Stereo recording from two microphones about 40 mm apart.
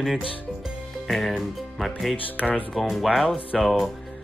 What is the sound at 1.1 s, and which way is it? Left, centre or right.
Speech, centre.